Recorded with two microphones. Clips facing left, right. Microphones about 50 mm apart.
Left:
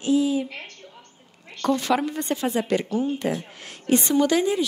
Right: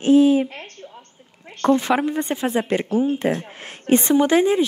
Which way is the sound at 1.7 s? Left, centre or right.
Right.